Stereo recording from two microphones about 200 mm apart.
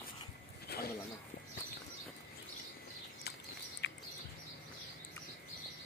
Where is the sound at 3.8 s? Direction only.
60° left (ahead or behind).